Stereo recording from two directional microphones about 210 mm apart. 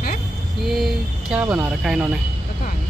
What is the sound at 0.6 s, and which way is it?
Speech, centre (ahead or behind).